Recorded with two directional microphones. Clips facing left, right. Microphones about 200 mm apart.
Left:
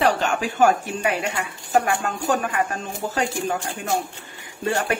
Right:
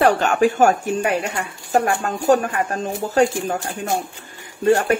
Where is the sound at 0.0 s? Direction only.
50° right (ahead or behind).